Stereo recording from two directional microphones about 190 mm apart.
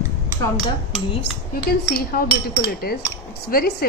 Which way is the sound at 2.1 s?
50° left (ahead or behind).